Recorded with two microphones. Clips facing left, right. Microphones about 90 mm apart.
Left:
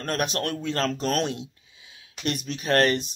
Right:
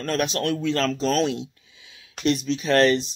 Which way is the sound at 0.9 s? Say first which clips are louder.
Right 4 dB; 55° left (ahead or behind).